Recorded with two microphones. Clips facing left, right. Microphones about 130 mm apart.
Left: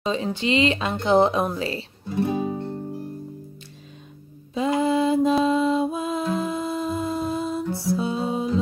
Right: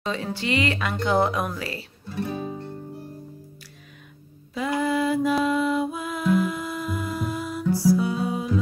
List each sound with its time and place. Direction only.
0.0 s speech: 20° left (ahead or behind)
4.6 s a sound: 25° left (ahead or behind)
5.4 s humming: 25° left (ahead or behind)